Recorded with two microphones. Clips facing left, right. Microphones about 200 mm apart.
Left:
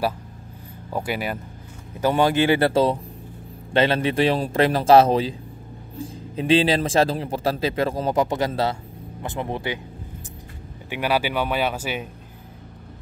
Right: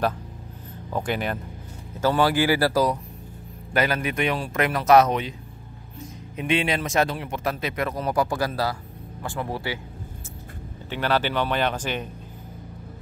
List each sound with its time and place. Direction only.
0.8 s speech: 10° left (ahead or behind)
2.0 s speech: 20° left (ahead or behind)
10.9 s speech: 10° left (ahead or behind)